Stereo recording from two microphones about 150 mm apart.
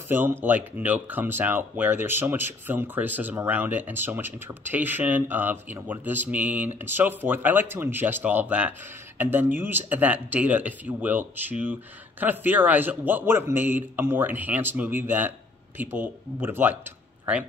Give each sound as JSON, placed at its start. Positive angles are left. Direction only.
{"t": 0.1, "sound": "speech", "side_deg": -15}